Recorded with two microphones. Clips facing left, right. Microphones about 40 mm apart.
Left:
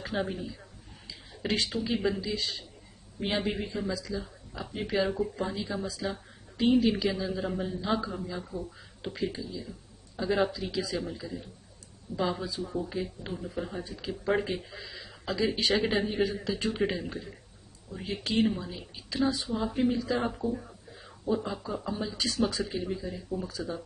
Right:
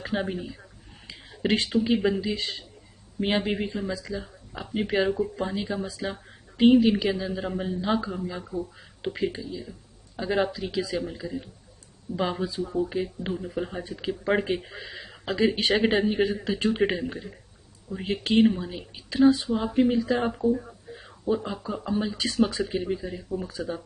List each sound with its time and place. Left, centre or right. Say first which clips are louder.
0.0 s speech: right 3 dB; right
1.0 s a sound: right 6 dB; right
1.7 s speech: right 6 dB; centre
5.6 s speech: right 3 dB; centre
12.2 s speech: right 3 dB; right
19.5 s speech: right 5 dB; right
20.3 s speech: right 8 dB; centre
20.6 s a sound: right 5 dB; right
21.5 s speech: right 3 dB; centre
22.2 s speech: right 2 dB; right